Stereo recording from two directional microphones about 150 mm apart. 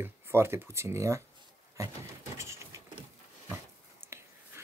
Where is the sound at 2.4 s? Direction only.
20° right (ahead or behind).